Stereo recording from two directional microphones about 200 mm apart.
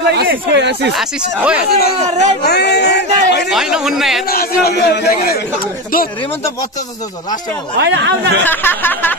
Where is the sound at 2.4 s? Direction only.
55° left (ahead or behind).